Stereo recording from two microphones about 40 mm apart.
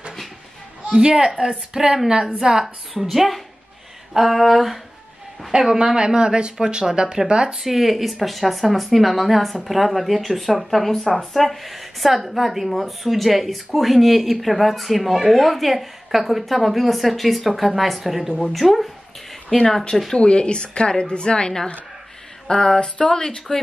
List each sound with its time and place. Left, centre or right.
0.9 s a woman's voice: centre
2.6 s speech: centre
5.5 s speech: centre
7.6 s speech: centre
20.2 s speech: left